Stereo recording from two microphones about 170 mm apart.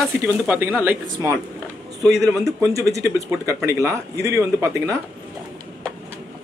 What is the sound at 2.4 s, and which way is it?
A man's voice, 20° right (ahead or behind).